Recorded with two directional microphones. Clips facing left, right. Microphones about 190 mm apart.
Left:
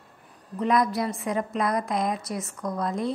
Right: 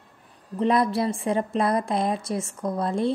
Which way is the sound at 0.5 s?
30° right (ahead or behind).